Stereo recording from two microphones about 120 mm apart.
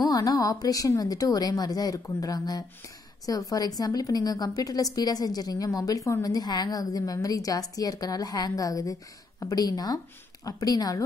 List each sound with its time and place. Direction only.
0.0 s a woman's voice: 30° left (ahead or behind)